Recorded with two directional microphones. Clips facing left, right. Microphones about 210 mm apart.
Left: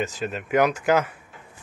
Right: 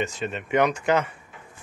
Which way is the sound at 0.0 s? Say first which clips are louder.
Left 1 dB; centre (ahead or behind).